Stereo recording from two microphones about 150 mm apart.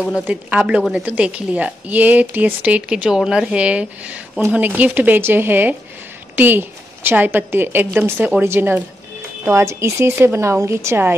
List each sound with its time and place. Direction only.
0.3 s a woman's voice: 10° right (ahead or behind)